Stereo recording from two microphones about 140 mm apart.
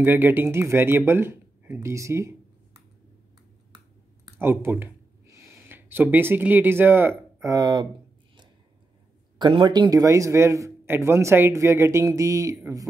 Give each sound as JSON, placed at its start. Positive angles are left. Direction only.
{"t": 0.0, "sound": "speech", "side_deg": -15}
{"t": 4.4, "sound": "speech", "side_deg": -15}
{"t": 7.4, "sound": "speech", "side_deg": -30}
{"t": 9.4, "sound": "a man's voice", "side_deg": -35}